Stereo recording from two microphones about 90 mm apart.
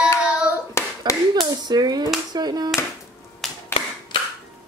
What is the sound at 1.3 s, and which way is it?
Speech, 50° right (ahead or behind).